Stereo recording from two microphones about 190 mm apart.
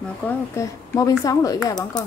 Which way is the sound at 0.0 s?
10° left (ahead or behind).